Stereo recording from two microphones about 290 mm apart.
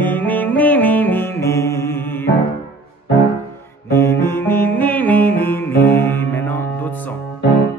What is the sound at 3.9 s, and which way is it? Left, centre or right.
Music, centre.